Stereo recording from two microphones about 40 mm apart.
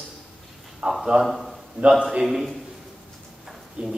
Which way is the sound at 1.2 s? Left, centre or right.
Centre.